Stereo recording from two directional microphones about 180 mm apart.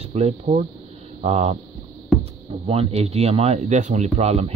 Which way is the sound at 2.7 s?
35° right (ahead or behind).